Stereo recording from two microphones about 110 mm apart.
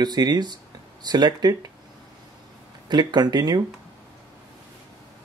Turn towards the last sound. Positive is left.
turn(degrees=-40)  # may be behind; listen again after turning